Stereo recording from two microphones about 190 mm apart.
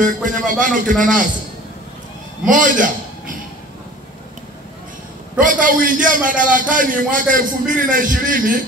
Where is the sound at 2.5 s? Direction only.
45° right (ahead or behind).